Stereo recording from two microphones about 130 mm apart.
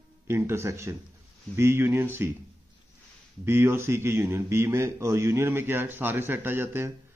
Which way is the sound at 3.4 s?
20° right (ahead or behind).